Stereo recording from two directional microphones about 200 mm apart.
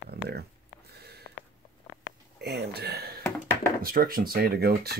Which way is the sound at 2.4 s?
55° right (ahead or behind).